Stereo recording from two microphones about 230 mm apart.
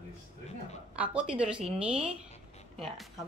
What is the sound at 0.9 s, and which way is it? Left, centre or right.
A woman's voice, centre.